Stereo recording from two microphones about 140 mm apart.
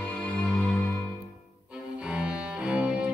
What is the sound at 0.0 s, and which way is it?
Music, 10° left (ahead or behind).